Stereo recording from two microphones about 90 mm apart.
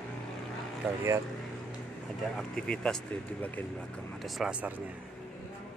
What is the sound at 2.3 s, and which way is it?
Speech, 10° left (ahead or behind).